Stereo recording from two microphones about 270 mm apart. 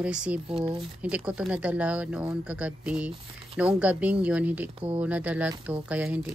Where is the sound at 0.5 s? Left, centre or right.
Centre.